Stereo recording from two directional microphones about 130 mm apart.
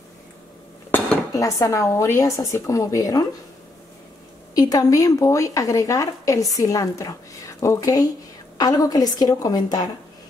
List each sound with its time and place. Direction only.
0.9 s dishes: 15° left (ahead or behind)
1.3 s a woman's voice: 25° left (ahead or behind)
4.6 s a woman's voice: 30° left (ahead or behind)